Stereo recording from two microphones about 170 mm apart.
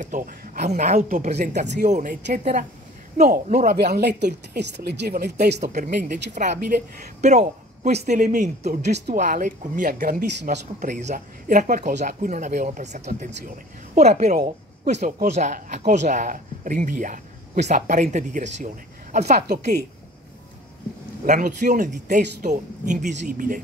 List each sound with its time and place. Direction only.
0.0 s speech: 50° right (ahead or behind)
3.6 s a woman's voice: 70° right (ahead or behind)
5.6 s a man's voice: 45° right (ahead or behind)
8.9 s speech: 70° right (ahead or behind)
9.2 s speech: 50° right (ahead or behind)
19.4 s speech: 70° right (ahead or behind)
21.3 s speech: 45° right (ahead or behind)